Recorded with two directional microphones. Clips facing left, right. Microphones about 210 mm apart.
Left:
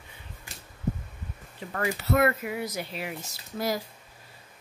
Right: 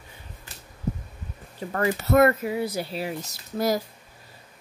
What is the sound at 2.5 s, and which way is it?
Speech, 30° right (ahead or behind).